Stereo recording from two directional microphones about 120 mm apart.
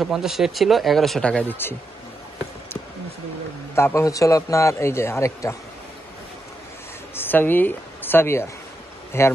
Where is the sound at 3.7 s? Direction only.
25° left (ahead or behind).